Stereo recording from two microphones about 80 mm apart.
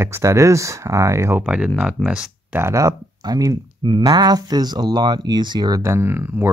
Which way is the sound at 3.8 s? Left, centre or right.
Right.